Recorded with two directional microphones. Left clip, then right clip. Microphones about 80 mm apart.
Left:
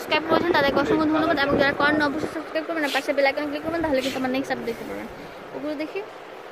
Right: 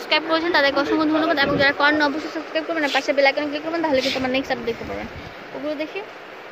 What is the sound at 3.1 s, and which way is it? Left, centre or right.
A woman's voice, right.